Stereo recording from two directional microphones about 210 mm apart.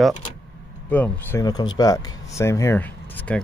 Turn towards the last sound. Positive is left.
turn(degrees=10)  # may be behind; listen again after turning